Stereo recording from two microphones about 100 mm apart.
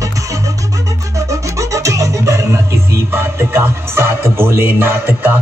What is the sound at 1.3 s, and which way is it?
Music, 30° right (ahead or behind).